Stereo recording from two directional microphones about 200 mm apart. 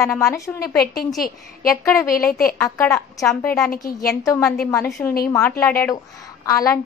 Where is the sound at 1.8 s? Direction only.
15° left (ahead or behind).